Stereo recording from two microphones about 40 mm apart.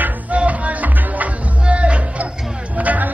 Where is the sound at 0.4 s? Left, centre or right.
Right.